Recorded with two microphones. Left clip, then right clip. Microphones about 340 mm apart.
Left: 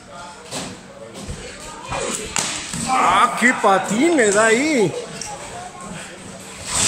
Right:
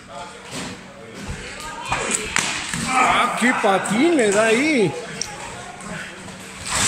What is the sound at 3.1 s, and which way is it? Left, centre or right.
Speech, centre.